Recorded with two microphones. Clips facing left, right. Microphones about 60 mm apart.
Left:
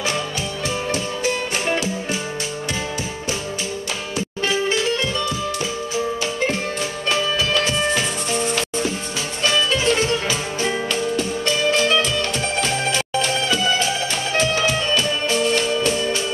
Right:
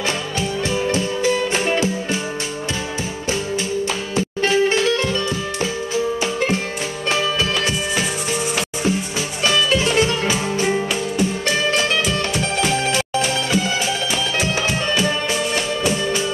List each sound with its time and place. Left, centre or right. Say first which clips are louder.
4.4 s music: right 4 dB; right
9.9 s music: right 3 dB; right